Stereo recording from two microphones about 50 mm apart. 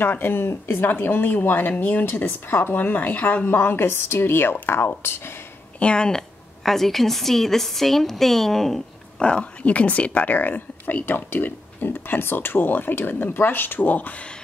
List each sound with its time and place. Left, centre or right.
0.0 s speech: left
3.4 s speech: left
5.8 s speech: centre
6.6 s a woman's voice: centre
9.2 s speech: left